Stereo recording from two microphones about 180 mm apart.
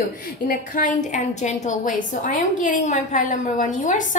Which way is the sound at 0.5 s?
45° left (ahead or behind).